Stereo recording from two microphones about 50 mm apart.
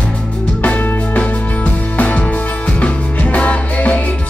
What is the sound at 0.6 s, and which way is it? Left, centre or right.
Music, left.